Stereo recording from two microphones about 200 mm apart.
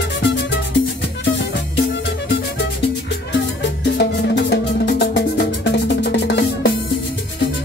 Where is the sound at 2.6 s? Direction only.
60° left (ahead or behind).